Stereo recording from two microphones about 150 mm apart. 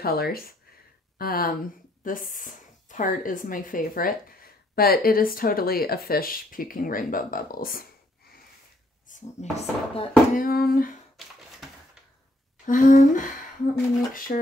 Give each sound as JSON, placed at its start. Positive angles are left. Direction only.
{"t": 0.0, "sound": "speech", "side_deg": 90}
{"t": 2.0, "sound": "speech", "side_deg": 65}
{"t": 9.0, "sound": "speech", "side_deg": 55}
{"t": 10.4, "sound": "humming", "side_deg": 80}
{"t": 12.6, "sound": "a sound", "side_deg": 60}
{"t": 14.1, "sound": "humming", "side_deg": 65}